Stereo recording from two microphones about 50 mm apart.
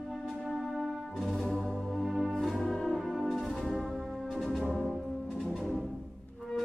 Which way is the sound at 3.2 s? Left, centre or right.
Centre.